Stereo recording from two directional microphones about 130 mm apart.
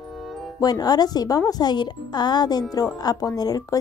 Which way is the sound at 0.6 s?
30° left (ahead or behind).